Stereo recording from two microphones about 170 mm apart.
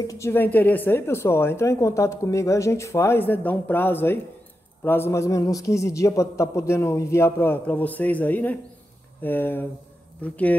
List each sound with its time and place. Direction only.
0.0 s a woman's voice: 20° left (ahead or behind)